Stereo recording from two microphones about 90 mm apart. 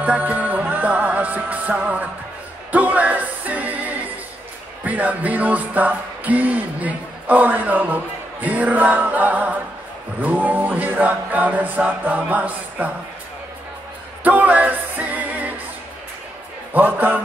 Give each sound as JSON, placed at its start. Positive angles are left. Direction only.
{"t": 0.0, "sound": "music", "side_deg": -20}
{"t": 2.7, "sound": "a capella", "side_deg": -15}
{"t": 4.8, "sound": "a sound", "side_deg": -15}
{"t": 10.2, "sound": "music", "side_deg": -20}
{"t": 14.2, "sound": "music", "side_deg": -15}
{"t": 16.7, "sound": "music", "side_deg": -20}